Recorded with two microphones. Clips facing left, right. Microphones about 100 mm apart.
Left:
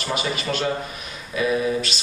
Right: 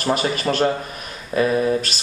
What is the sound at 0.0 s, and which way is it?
A man's voice, 45° right (ahead or behind).